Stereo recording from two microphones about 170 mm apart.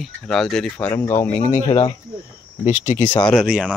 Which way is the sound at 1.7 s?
30° left (ahead or behind).